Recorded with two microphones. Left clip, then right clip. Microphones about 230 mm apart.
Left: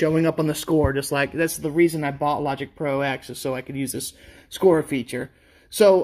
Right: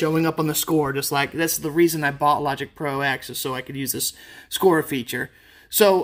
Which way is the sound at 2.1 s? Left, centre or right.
Right.